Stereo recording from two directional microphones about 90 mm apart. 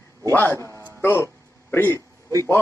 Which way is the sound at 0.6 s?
30° right (ahead or behind).